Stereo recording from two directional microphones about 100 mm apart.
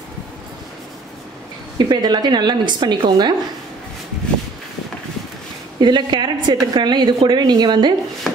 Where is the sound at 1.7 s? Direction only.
45° right (ahead or behind).